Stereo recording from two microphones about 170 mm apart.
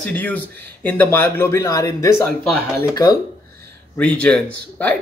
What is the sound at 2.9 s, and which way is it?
Speech, 20° left (ahead or behind).